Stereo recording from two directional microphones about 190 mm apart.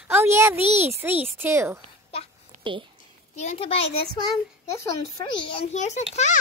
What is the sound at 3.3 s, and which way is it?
Speech, 35° left (ahead or behind).